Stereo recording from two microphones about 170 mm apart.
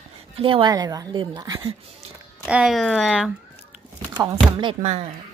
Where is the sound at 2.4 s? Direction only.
5° right (ahead or behind).